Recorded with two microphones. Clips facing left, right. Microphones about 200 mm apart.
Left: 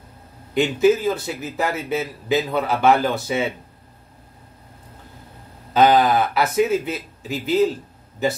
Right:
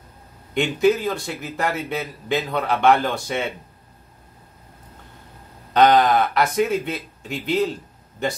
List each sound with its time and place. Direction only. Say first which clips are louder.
0.6 s a man's voice: left 2 dB; centre (ahead or behind)
5.7 s a man's voice: even; 5° left (ahead or behind)